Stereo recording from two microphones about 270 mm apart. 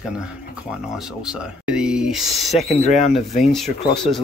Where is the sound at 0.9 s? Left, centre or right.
Centre.